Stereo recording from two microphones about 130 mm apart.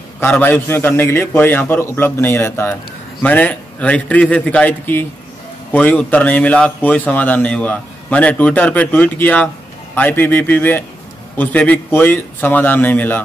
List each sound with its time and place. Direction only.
0.2 s a man's voice: 15° left (ahead or behind)